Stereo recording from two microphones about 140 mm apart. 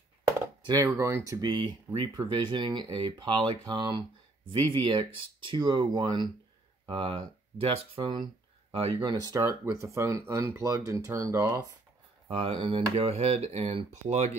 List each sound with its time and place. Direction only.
0.7 s speech: 25° right (ahead or behind); by 9.1 s 40° right (ahead or behind)
9.1 s speech: 25° right (ahead or behind)
12.3 s speech: 45° right (ahead or behind)